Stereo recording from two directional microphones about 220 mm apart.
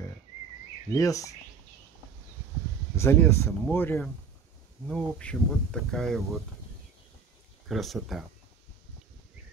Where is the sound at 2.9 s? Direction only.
10° left (ahead or behind).